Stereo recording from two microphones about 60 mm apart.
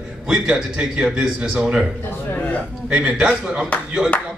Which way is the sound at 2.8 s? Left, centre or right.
Centre.